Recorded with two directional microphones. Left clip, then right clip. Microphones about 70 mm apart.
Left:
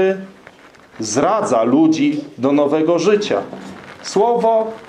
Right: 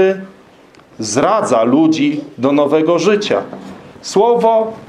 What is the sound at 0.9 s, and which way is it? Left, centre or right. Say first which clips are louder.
Speech: right 3 dB; right.